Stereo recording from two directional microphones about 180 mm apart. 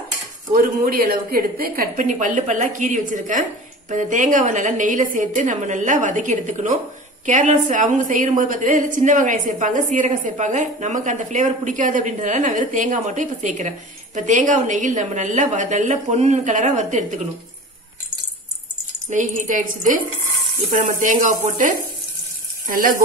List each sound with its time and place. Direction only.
0.8 s a woman's voice: 55° right (ahead or behind)
19.0 s a woman's voice: 45° right (ahead or behind)